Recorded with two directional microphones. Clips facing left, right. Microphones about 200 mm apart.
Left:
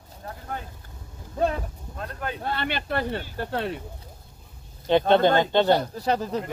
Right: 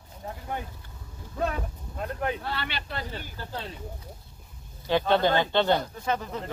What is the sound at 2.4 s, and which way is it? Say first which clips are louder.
Speech: left 5 dB; 50° left (ahead or behind).